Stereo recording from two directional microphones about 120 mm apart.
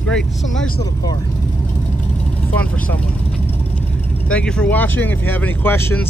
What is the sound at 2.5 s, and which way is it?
Vehicle, 10° left (ahead or behind).